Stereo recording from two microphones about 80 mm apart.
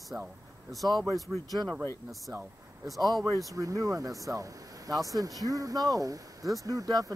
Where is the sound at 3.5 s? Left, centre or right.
Right.